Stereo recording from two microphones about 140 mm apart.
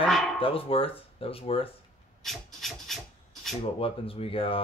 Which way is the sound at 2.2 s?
Centre (ahead or behind).